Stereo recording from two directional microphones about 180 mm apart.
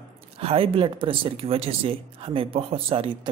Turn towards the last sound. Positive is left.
turn(degrees=-30)  # may be behind; listen again after turning